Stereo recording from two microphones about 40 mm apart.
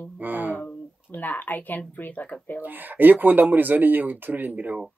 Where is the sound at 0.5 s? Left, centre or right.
Left.